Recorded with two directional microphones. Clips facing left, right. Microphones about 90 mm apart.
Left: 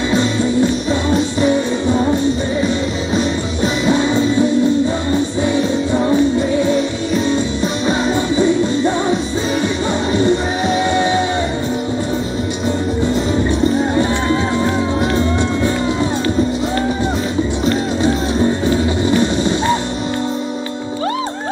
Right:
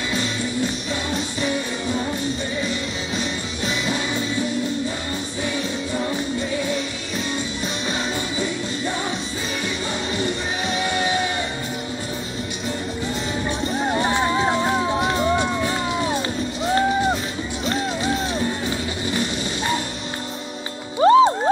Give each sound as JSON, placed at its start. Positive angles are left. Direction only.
{"t": 1.1, "sound": "music", "side_deg": 35}
{"t": 3.2, "sound": "music", "side_deg": 35}
{"t": 10.2, "sound": "music", "side_deg": 30}
{"t": 21.0, "sound": "music", "side_deg": -30}